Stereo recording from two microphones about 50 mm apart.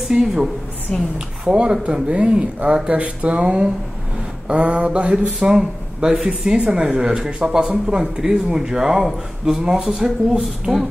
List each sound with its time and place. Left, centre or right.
0.1 s speech: centre
5.6 s speech: centre